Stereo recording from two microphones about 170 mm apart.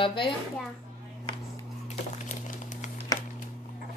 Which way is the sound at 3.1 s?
20° left (ahead or behind).